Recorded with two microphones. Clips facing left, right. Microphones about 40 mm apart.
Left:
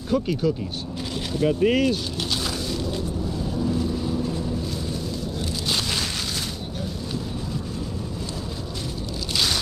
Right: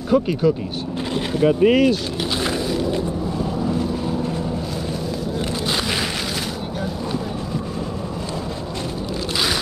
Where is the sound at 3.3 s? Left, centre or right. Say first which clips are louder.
Right 2 dB; right.